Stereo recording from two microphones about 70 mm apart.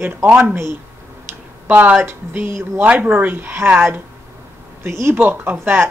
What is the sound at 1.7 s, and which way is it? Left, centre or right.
Speech, right.